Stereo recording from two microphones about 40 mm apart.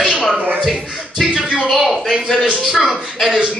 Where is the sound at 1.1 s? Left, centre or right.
Centre.